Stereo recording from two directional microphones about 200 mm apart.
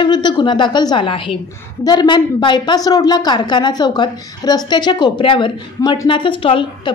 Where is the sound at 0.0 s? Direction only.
25° left (ahead or behind).